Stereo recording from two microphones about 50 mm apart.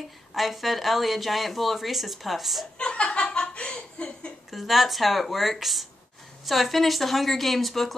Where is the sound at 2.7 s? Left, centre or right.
Left.